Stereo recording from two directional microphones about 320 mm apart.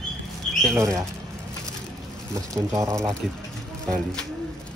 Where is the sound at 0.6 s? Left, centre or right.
Centre.